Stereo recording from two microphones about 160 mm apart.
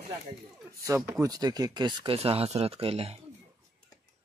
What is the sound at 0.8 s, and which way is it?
Speech, 15° right (ahead or behind).